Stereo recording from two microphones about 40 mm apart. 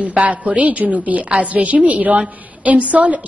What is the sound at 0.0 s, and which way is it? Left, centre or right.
A woman's voice, right.